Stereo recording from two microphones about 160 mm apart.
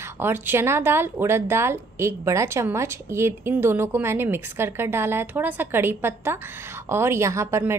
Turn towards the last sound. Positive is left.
turn(degrees=-15)  # may be behind; listen again after turning